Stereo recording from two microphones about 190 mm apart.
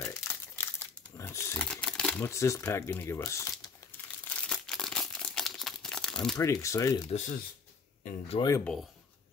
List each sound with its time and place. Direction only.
0.0 s crumpling: 15° left (ahead or behind)
6.3 s speech: 15° left (ahead or behind)
7.1 s speech: 40° left (ahead or behind)
8.4 s speech: 15° left (ahead or behind)